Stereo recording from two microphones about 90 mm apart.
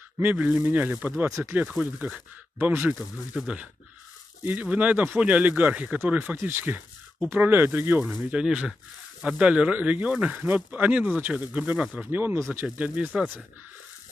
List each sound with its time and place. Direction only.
0.2 s speech: 15° right (ahead or behind)
3.3 s speech: 10° right (ahead or behind)
8.3 s speech: 10° right (ahead or behind)